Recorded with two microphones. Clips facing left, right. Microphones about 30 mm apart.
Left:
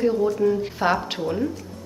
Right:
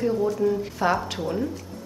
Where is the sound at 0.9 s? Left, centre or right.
Centre.